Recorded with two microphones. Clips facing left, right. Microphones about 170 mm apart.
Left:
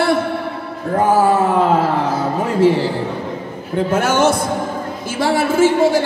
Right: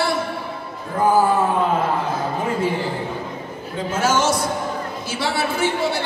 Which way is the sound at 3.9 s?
60° left (ahead or behind).